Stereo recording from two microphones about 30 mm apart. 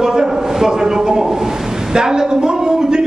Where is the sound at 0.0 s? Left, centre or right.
Centre.